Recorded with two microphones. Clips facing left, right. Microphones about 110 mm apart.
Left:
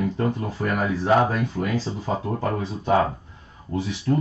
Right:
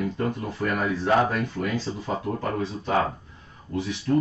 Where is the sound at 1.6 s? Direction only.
25° left (ahead or behind).